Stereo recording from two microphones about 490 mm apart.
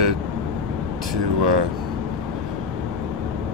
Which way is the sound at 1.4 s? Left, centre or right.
Right.